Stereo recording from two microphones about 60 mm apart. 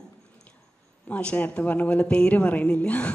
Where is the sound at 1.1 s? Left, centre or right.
Left.